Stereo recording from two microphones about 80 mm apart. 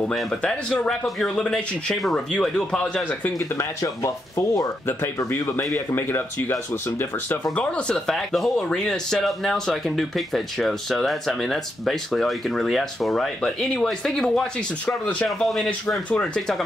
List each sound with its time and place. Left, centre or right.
0.1 s speech: centre
3.3 s speech: left
4.8 s speech: left
7.5 s speech: centre
8.1 s speech: centre